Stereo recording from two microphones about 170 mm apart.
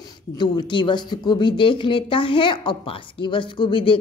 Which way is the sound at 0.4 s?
25° left (ahead or behind).